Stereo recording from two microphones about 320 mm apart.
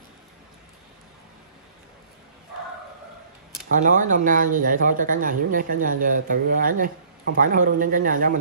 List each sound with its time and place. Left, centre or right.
3.7 s speech: right